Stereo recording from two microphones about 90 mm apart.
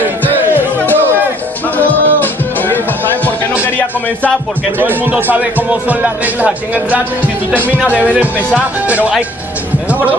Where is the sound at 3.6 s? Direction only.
20° left (ahead or behind).